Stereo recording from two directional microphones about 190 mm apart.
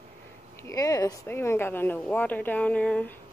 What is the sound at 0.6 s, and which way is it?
A woman's voice, 15° left (ahead or behind).